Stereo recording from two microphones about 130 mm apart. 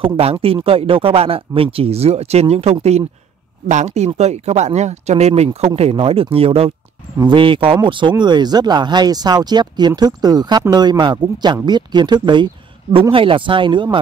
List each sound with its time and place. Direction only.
0.0 s speech: 50° right (ahead or behind)
3.6 s speech: 65° right (ahead or behind); by 6.7 s 50° right (ahead or behind)
7.2 s speech: 40° right (ahead or behind)